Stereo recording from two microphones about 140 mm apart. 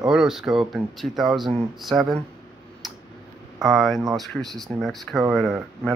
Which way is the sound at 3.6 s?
Centre (ahead or behind).